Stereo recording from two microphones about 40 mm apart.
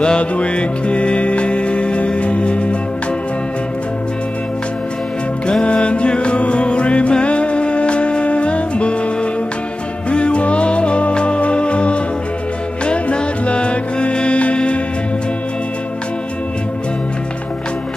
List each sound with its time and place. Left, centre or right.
0.0 s music: left
5.5 s music: left